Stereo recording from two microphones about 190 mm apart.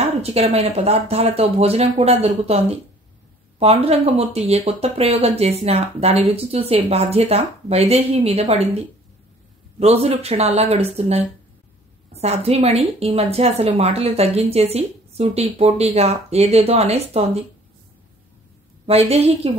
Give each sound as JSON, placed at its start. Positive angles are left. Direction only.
{"t": 0.2, "sound": "speech", "side_deg": -35}
{"t": 18.9, "sound": "speech", "side_deg": -35}